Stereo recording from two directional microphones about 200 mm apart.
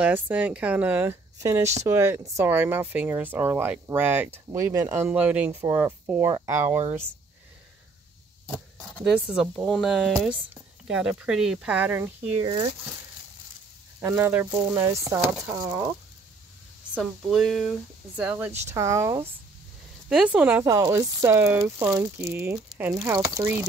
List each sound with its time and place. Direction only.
0.0 s speech: 5° right (ahead or behind)
8.9 s speech: 5° right (ahead or behind)
12.4 s speech: 20° right (ahead or behind)
14.0 s speech: 10° right (ahead or behind)
16.9 s speech: centre (ahead or behind)